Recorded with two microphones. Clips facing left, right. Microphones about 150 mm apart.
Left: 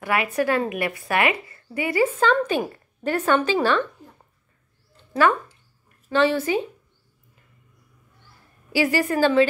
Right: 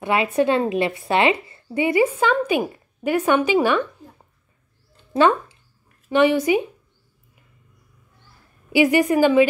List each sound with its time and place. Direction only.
0.0 s a woman's voice: 25° right (ahead or behind)
6.0 s a woman's voice: 15° right (ahead or behind)
8.7 s a woman's voice: 15° right (ahead or behind)